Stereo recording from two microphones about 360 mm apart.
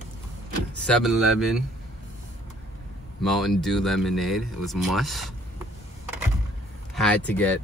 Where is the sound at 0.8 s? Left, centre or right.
Centre.